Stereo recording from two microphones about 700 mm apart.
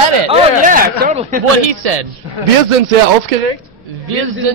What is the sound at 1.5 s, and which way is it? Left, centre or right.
Speech, right.